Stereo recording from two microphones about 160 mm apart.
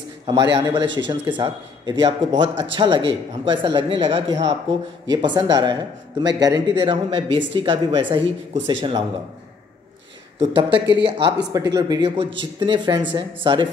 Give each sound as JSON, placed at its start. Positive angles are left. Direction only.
{"t": 0.3, "sound": "a man's voice", "side_deg": -25}
{"t": 10.4, "sound": "a man's voice", "side_deg": -30}